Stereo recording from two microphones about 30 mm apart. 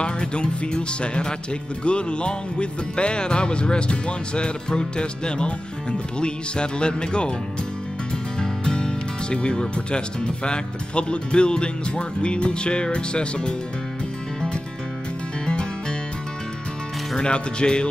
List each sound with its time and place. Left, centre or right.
0.0 s music: left
8.4 s music: left
17.2 s music: left